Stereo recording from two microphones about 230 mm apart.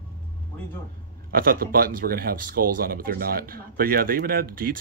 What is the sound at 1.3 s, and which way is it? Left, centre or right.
Speech, right.